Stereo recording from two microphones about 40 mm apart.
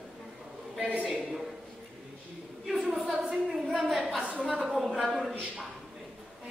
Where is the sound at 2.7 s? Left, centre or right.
Centre.